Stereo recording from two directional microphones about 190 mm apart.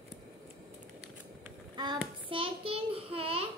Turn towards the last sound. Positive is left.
turn(degrees=-30)  # may be behind; listen again after turning